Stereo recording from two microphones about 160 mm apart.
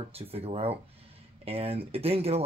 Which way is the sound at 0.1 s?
40° right (ahead or behind).